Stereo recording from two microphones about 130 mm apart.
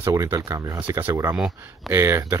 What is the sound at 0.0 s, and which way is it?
Speech, 25° right (ahead or behind).